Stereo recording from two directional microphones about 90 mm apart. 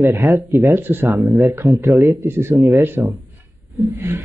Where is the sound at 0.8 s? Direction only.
20° right (ahead or behind).